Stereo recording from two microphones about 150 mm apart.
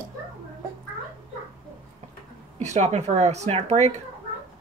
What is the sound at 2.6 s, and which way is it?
Speech, 50° right (ahead or behind).